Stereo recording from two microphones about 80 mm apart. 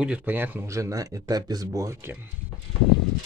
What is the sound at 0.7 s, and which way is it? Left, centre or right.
Speech, right.